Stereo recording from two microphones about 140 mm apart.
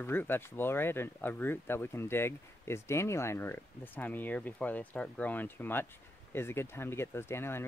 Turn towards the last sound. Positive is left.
turn(degrees=15)  # may be behind; listen again after turning